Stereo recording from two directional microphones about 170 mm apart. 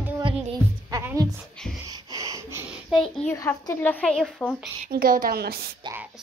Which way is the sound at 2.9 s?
Centre (ahead or behind).